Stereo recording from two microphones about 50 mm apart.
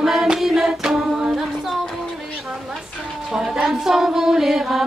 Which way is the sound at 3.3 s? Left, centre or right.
Centre.